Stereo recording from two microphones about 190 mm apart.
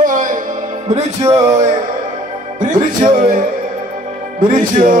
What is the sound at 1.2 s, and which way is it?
Music, 15° right (ahead or behind).